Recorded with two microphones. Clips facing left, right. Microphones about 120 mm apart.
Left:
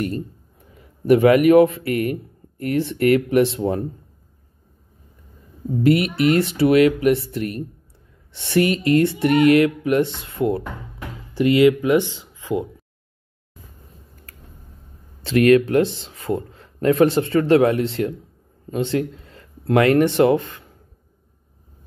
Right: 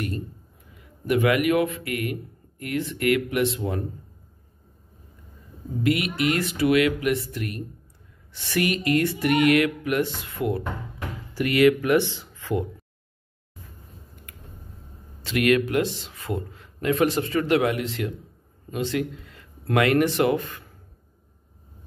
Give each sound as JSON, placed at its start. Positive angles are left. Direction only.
{"t": 0.0, "sound": "speech", "side_deg": 35}
{"t": 5.8, "sound": "speech", "side_deg": 35}
{"t": 15.2, "sound": "speech", "side_deg": 35}